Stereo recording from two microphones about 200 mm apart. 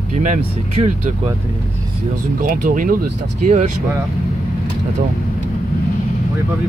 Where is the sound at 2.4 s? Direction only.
45° right (ahead or behind).